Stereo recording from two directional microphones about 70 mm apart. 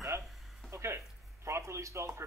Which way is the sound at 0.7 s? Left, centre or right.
Right.